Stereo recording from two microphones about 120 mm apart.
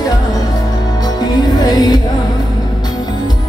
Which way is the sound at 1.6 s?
35° left (ahead or behind).